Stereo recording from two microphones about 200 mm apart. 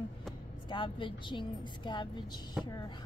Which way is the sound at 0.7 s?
25° left (ahead or behind).